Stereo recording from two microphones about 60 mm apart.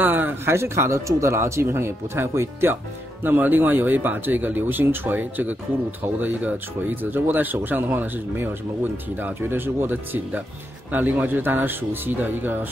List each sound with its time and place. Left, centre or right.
0.0 s a sound: right
0.5 s speech: right
3.3 s speech: right